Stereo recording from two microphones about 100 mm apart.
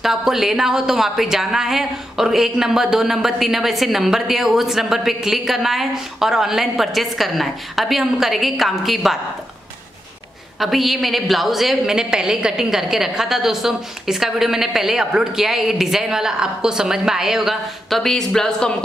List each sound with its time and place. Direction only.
0.0 s speech: 5° right (ahead or behind)
10.6 s speech: centre (ahead or behind)